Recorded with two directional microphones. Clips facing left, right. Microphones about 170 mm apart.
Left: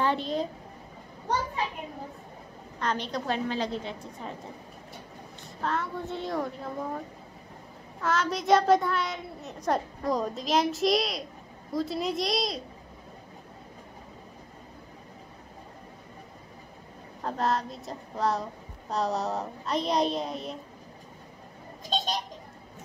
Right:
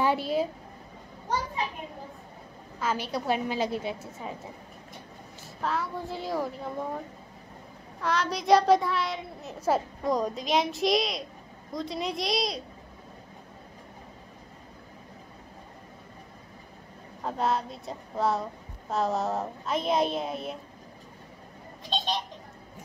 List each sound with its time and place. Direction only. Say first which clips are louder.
0.0 s a sound: right 2 dB; 10° right (ahead or behind)
2.8 s a woman's voice: right 1 dB; 5° right (ahead or behind)
5.6 s a child's voice: even; centre (ahead or behind)
8.0 s a child's voice: left 1 dB; centre (ahead or behind)
17.2 s a child's voice: even; centre (ahead or behind)
21.8 s a sound: even; 45° left (ahead or behind)